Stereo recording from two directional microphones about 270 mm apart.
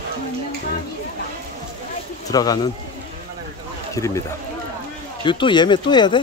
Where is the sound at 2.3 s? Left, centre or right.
Centre.